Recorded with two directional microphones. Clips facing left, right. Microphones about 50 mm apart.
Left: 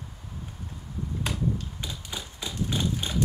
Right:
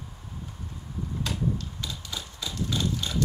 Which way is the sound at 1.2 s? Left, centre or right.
Left.